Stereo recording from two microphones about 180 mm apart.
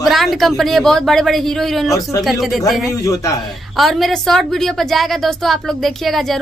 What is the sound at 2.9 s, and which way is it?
Speech, 15° left (ahead or behind).